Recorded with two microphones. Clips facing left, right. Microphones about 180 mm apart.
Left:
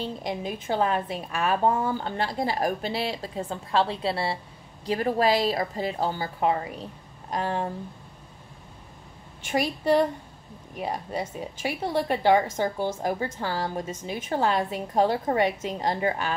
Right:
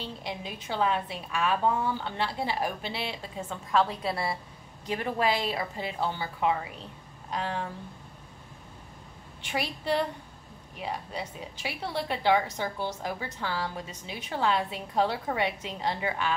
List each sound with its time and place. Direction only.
0.0 s a woman's voice: 45° left (ahead or behind)
9.4 s a woman's voice: 45° left (ahead or behind)